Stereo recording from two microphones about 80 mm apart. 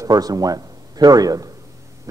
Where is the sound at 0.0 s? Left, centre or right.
Right.